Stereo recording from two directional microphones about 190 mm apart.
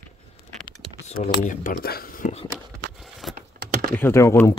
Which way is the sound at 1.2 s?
40° left (ahead or behind).